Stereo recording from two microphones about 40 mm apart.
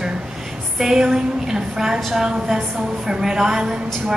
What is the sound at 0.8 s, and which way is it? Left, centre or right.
A woman's voice, centre.